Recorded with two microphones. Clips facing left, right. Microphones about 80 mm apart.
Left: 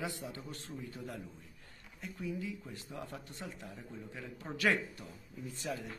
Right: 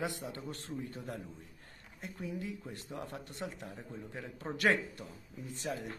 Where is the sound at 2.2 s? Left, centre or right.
Right.